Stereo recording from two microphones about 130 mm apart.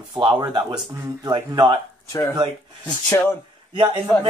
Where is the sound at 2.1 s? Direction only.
25° left (ahead or behind).